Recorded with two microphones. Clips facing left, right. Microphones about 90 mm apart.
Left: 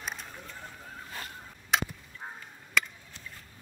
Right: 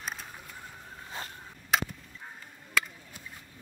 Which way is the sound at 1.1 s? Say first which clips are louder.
Right 2 dB; 25° right (ahead or behind).